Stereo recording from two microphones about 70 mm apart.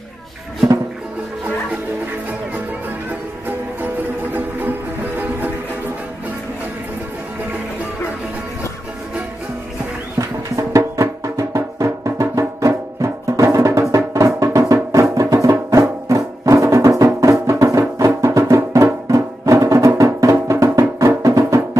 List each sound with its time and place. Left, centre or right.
3.4 s music: right
10.1 s music: right